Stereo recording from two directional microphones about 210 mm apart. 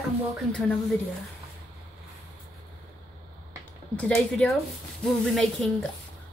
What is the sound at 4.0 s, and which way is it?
Speech, 5° left (ahead or behind).